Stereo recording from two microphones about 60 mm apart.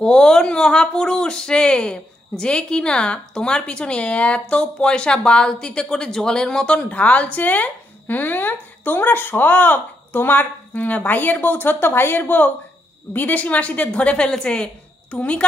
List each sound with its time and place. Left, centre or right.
0.0 s a woman's voice: centre